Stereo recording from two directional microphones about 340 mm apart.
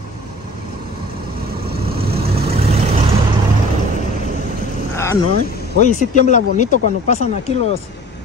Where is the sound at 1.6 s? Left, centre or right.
Right.